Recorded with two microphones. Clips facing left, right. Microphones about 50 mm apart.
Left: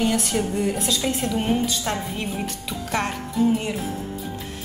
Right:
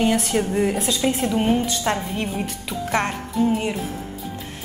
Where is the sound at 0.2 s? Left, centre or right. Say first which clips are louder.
Right 3 dB; centre.